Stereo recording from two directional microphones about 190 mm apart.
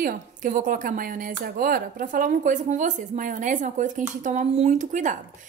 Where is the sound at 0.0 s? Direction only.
45° right (ahead or behind).